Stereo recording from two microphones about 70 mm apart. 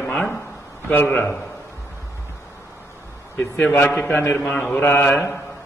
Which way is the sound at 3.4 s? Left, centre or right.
Left.